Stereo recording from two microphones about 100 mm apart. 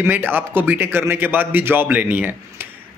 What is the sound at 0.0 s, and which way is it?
A man's voice, 20° right (ahead or behind).